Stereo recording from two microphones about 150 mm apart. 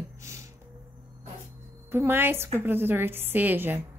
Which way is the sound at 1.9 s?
15° right (ahead or behind).